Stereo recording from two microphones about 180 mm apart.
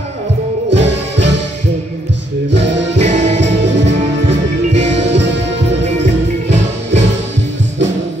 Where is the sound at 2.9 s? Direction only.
40° right (ahead or behind).